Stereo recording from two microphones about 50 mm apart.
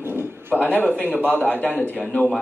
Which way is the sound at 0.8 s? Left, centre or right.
Left.